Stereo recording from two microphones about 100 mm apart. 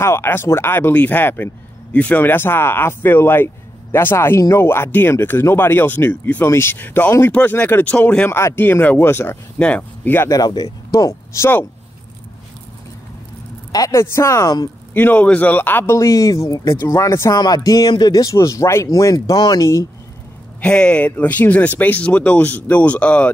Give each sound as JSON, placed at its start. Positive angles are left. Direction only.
{"t": 0.0, "sound": "speech", "side_deg": 25}
{"t": 8.3, "sound": "speech", "side_deg": 25}
{"t": 9.6, "sound": "speech", "side_deg": 15}
{"t": 10.3, "sound": "speech", "side_deg": 45}
{"t": 11.1, "sound": "speech", "side_deg": 25}
{"t": 13.7, "sound": "a man's voice", "side_deg": 40}
{"t": 13.9, "sound": "speech", "side_deg": 25}
{"t": 15.0, "sound": "speech", "side_deg": 15}
{"t": 16.0, "sound": "speech", "side_deg": 35}
{"t": 20.6, "sound": "speech", "side_deg": 10}